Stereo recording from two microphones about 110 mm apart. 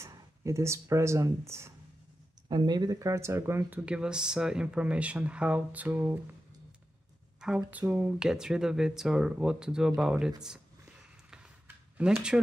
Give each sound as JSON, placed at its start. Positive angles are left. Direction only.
{"t": 0.0, "sound": "speech", "side_deg": -25}
{"t": 2.4, "sound": "speech", "side_deg": -40}
{"t": 3.8, "sound": "speech", "side_deg": -10}
{"t": 7.3, "sound": "speech", "side_deg": -5}
{"t": 11.6, "sound": "a sound", "side_deg": -20}